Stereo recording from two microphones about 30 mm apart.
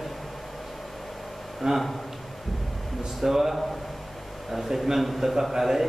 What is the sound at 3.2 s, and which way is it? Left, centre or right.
Speech, centre.